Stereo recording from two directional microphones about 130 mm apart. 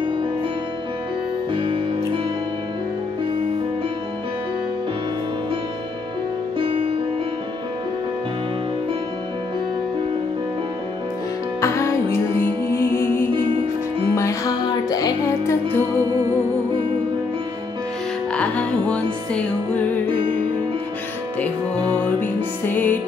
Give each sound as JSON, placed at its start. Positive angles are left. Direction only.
{"t": 1.5, "sound": "music", "side_deg": -40}
{"t": 6.6, "sound": "music", "side_deg": -45}
{"t": 11.6, "sound": "music", "side_deg": 20}
{"t": 18.3, "sound": "music", "side_deg": 10}
{"t": 20.1, "sound": "music", "side_deg": -40}
{"t": 22.2, "sound": "music", "side_deg": 15}